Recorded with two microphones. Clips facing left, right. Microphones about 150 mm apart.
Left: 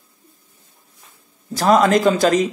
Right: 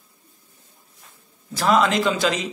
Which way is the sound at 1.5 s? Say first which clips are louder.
Left 5 dB; 40° left (ahead or behind).